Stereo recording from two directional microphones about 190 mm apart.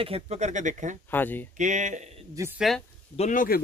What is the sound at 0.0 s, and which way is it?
Speech, 35° right (ahead or behind).